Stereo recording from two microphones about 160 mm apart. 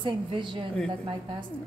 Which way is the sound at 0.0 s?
30° right (ahead or behind).